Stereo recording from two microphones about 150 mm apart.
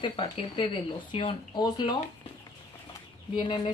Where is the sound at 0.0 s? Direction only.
35° left (ahead or behind).